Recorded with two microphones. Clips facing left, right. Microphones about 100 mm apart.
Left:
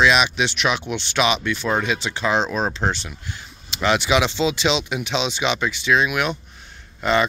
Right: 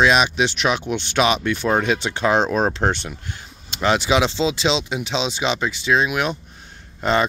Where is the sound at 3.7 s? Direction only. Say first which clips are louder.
Right 1 dB; 35° right (ahead or behind).